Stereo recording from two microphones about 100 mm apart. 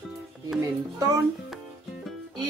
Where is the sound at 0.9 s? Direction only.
35° right (ahead or behind).